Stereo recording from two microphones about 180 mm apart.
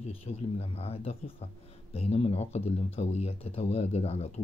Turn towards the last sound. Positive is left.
turn(degrees=35)  # may be behind; listen again after turning